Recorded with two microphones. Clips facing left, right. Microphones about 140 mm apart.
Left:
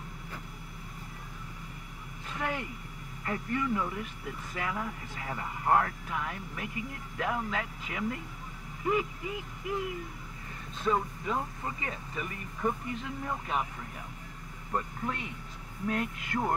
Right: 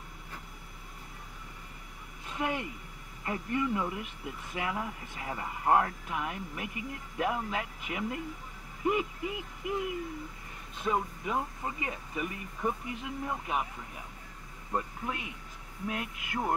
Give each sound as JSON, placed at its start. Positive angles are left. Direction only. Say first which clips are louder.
{"t": 2.3, "sound": "vehicle", "louder": "right 2 dB", "side_deg": -15}
{"t": 3.3, "sound": "speech", "louder": "even", "side_deg": -15}
{"t": 10.8, "sound": "speech", "louder": "left 1 dB", "side_deg": -10}
{"t": 14.7, "sound": "speech", "louder": "left 1 dB", "side_deg": -10}